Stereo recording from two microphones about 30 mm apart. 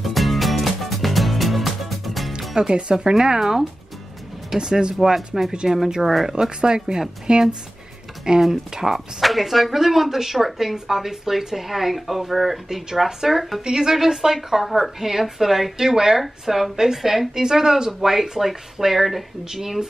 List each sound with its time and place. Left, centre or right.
0.0 s music: centre
2.7 s speech: right
3.3 s speech: centre
4.6 s speech: right
5.0 s speech: centre
6.6 s speech: right
8.4 s speech: centre
8.9 s speech: centre
13.7 s speech: centre